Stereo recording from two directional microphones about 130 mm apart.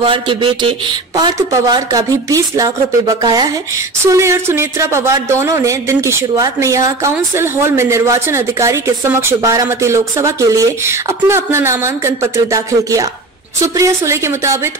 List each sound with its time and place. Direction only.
0.0 s speech: 40° right (ahead or behind); by 14.7 s 20° right (ahead or behind)